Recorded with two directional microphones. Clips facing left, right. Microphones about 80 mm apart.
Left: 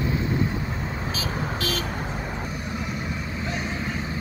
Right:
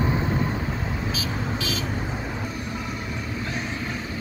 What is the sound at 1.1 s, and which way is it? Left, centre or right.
Vehicle, left.